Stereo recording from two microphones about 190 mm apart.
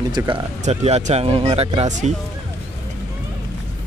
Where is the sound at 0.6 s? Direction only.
35° right (ahead or behind).